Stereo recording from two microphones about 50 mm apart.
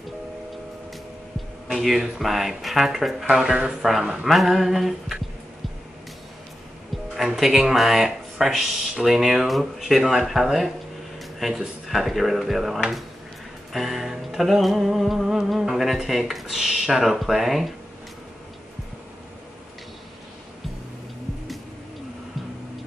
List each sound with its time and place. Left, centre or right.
1.7 s speech: centre
7.2 s speech: centre
15.2 s a sound: centre
15.6 s speech: centre